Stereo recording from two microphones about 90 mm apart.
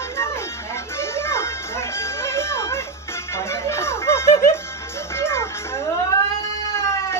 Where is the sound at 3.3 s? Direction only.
30° left (ahead or behind).